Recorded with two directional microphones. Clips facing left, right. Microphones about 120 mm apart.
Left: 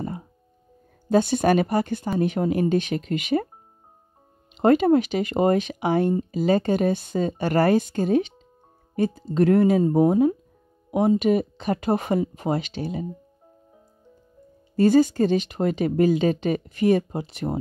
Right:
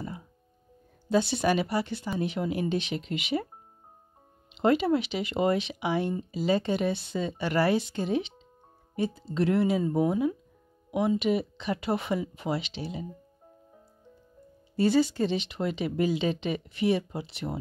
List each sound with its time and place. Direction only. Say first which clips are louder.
0.0 s music: left 7 dB; 50° left (ahead or behind)
1.0 s speech: left 6 dB; 50° left (ahead or behind)
4.6 s speech: left 6 dB; 45° left (ahead or behind)
14.8 s speech: left 6 dB; 45° left (ahead or behind)